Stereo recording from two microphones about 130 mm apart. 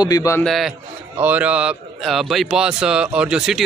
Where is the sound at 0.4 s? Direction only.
Centre (ahead or behind).